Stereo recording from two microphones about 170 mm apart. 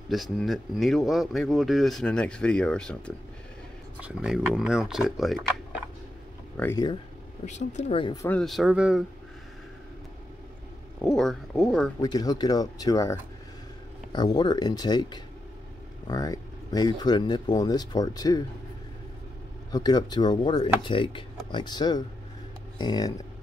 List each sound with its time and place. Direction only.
0.1 s speech: centre (ahead or behind)
4.0 s speech: 5° right (ahead or behind)
6.5 s speech: 10° left (ahead or behind)
7.4 s speech: 45° left (ahead or behind)
8.0 s speech: 25° left (ahead or behind)
8.3 s speech: centre (ahead or behind)
11.1 s speech: centre (ahead or behind)
12.0 s speech: 20° left (ahead or behind)
19.7 s speech: 25° left (ahead or behind)